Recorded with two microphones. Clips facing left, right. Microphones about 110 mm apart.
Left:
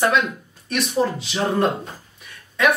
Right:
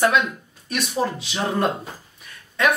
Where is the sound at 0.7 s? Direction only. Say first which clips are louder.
Left 3 dB; centre (ahead or behind).